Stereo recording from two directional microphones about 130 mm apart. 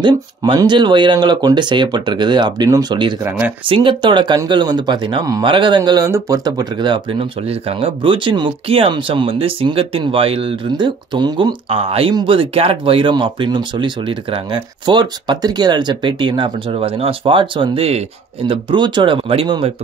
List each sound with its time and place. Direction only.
0.0 s speech: 35° right (ahead or behind)
3.3 s speech: 10° right (ahead or behind)
3.6 s speech: 40° right (ahead or behind)
10.7 s speech: 35° right (ahead or behind)
11.7 s speech: 45° right (ahead or behind)